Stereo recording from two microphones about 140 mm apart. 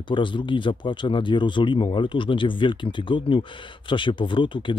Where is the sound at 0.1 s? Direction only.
35° left (ahead or behind).